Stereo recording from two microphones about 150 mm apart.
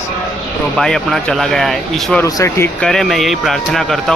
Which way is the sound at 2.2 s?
20° left (ahead or behind).